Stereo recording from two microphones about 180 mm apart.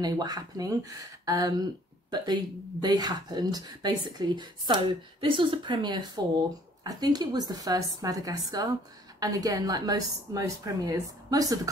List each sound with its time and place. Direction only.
0.0 s speech: 20° right (ahead or behind)